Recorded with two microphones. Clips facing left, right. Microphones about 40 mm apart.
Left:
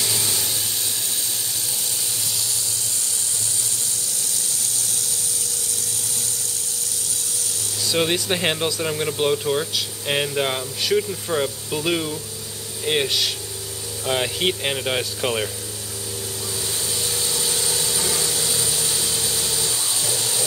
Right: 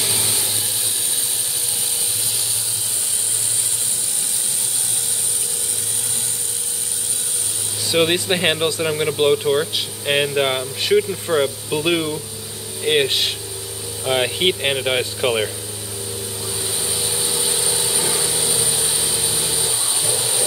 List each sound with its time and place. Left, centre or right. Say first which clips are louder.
0.0 s vehicle: right 1 dB; centre
7.9 s speech: right 4 dB; centre
17.0 s engine: right 2 dB; centre